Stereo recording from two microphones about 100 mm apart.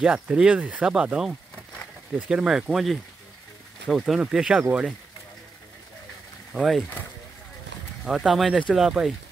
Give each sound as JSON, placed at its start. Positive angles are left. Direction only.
{"t": 0.0, "sound": "speech", "side_deg": -10}
{"t": 6.5, "sound": "speech", "side_deg": 0}
{"t": 8.0, "sound": "speech", "side_deg": -5}